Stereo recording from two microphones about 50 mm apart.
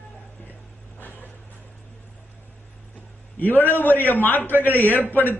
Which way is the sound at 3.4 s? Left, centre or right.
Left.